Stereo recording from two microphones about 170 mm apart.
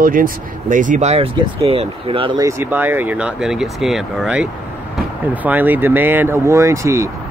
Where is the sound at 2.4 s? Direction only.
15° right (ahead or behind).